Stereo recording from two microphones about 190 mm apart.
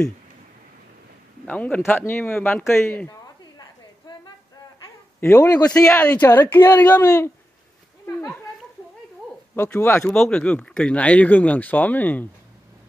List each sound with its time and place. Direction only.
1.4 s speech: 5° left (ahead or behind)
4.1 s a sound: 20° left (ahead or behind)
5.2 s speech: 15° left (ahead or behind)
5.7 s speech: 5° left (ahead or behind)
9.6 s speech: 10° left (ahead or behind)